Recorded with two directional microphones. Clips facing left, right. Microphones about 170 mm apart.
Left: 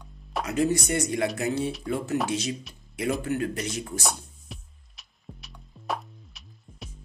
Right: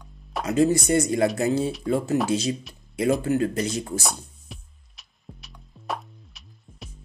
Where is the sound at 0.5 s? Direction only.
30° right (ahead or behind).